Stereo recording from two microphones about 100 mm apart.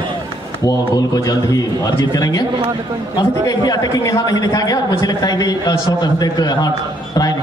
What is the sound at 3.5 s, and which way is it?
A man's voice, 35° left (ahead or behind).